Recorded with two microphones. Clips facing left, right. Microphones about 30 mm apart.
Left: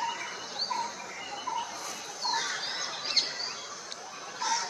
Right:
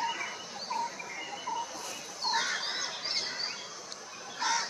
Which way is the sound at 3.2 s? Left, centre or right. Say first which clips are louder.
Left 8 dB; left.